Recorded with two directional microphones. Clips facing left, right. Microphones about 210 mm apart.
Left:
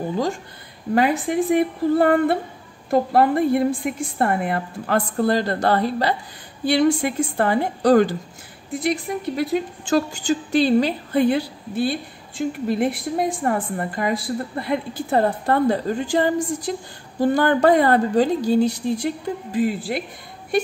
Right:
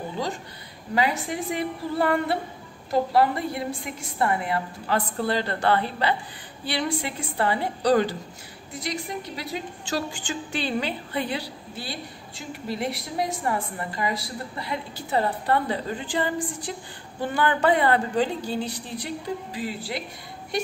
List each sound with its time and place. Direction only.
0.9 s a woman's voice: 50° left (ahead or behind)